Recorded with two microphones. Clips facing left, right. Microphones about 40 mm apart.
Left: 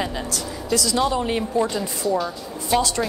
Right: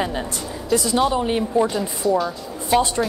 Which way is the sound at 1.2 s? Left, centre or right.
Centre.